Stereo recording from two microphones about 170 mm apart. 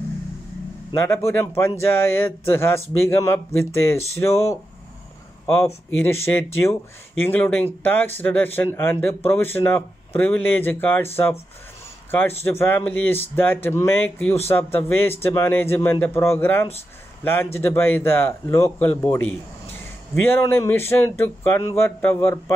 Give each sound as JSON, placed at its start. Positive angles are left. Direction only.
{"t": 0.9, "sound": "speech", "side_deg": 15}
{"t": 12.1, "sound": "speech", "side_deg": 15}
{"t": 20.2, "sound": "speech", "side_deg": 15}